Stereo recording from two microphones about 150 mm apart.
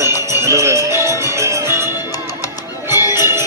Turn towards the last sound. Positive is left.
turn(degrees=25)  # may be behind; listen again after turning